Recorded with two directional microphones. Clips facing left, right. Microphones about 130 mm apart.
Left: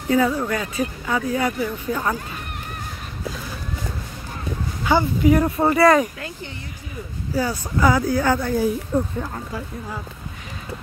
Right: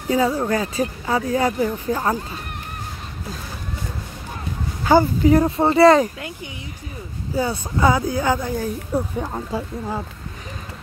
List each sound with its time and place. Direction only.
0.4 s speech: 35° right (ahead or behind)
4.8 s speech: 35° right (ahead or behind)